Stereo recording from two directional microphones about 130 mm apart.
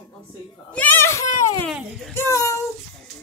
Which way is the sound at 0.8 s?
20° left (ahead or behind).